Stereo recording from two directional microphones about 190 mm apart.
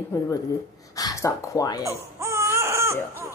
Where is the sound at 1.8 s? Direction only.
15° right (ahead or behind).